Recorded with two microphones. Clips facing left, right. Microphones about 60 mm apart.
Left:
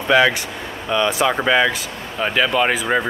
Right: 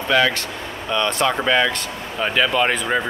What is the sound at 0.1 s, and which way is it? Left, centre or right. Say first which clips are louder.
Speech: left 3 dB; centre.